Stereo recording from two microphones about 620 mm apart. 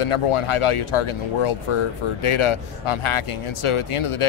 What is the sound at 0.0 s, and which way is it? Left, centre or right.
Speech, left.